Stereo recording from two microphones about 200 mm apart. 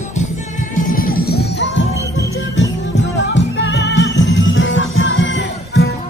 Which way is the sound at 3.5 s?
60° left (ahead or behind).